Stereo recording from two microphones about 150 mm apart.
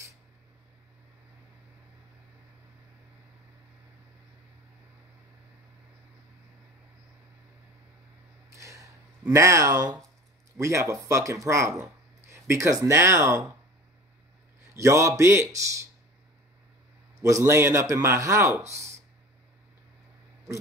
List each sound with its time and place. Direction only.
8.5 s a sound: 20° right (ahead or behind)
9.3 s a man's voice: 20° right (ahead or behind)
14.7 s a man's voice: 20° right (ahead or behind)
17.2 s a man's voice: 20° right (ahead or behind)